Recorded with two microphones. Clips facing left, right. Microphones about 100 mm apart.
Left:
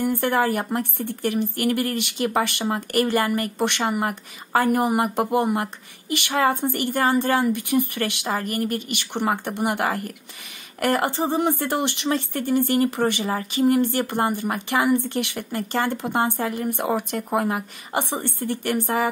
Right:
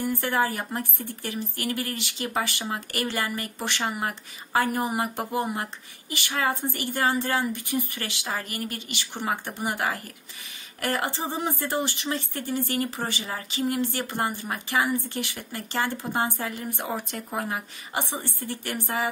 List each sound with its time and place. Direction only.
0.2 s speech: 60° left (ahead or behind)
10.8 s speech: 50° left (ahead or behind)
11.1 s speech: 65° left (ahead or behind)